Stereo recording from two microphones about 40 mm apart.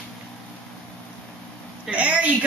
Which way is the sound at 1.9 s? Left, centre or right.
Right.